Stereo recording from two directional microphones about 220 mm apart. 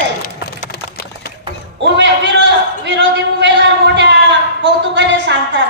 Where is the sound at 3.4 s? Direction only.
55° right (ahead or behind).